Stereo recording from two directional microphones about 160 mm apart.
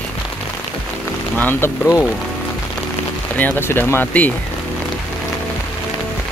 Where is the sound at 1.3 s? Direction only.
10° left (ahead or behind).